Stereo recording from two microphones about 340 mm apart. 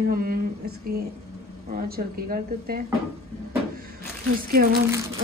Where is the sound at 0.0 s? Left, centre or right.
Right.